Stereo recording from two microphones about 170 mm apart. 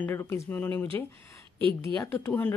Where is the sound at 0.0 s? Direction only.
15° left (ahead or behind).